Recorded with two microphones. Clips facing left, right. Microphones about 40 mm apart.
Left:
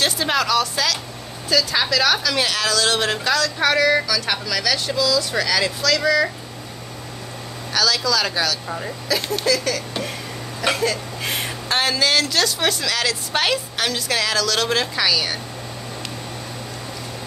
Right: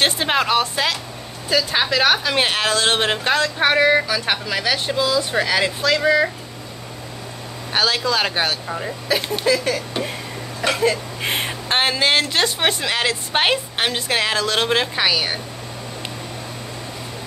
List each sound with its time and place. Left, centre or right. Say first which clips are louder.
0.0 s speech: right 2 dB; right
7.7 s speech: right 1 dB; right
8.6 s speech: right 2 dB; centre
9.1 s speech: right 2 dB; right